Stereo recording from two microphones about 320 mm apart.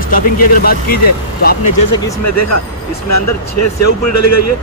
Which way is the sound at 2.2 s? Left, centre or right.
Left.